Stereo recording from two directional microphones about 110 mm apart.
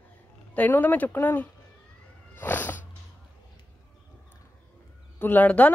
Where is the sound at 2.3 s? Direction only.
15° left (ahead or behind).